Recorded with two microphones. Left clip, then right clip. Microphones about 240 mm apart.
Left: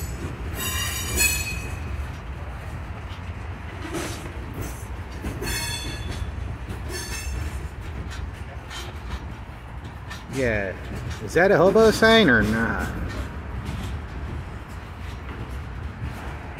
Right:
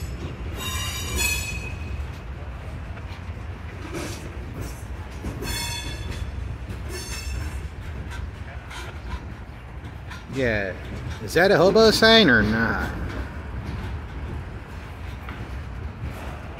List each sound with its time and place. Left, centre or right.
0.6 s train wheels squealing: left
3.8 s vehicle: left
5.2 s train: left
10.4 s speech: centre